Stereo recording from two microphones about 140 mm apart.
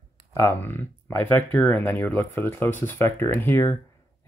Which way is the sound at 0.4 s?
20° left (ahead or behind).